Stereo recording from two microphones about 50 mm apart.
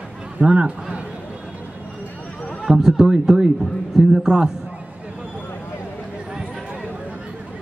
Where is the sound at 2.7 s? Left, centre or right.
Centre.